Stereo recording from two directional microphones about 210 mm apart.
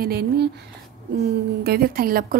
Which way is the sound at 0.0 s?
50° right (ahead or behind).